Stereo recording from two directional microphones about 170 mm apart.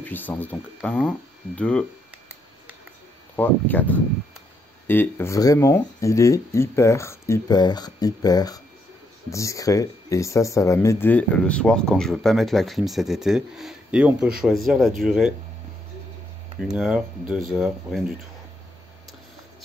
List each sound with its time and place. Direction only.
0.0 s speech: 10° left (ahead or behind)
3.3 s speech: 10° left (ahead or behind)
4.8 s speech: 10° left (ahead or behind)
16.5 s speech: centre (ahead or behind)